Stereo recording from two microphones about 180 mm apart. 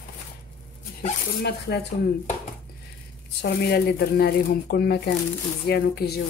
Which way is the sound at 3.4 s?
65° left (ahead or behind).